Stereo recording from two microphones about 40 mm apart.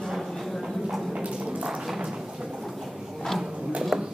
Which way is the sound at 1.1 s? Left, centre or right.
Right.